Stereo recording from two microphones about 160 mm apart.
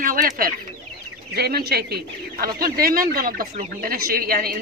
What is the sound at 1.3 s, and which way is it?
Speech, 85° right.